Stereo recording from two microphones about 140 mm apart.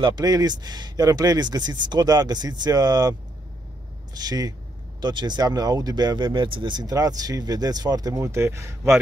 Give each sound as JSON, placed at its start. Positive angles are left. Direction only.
{"t": 0.0, "sound": "speech", "side_deg": -30}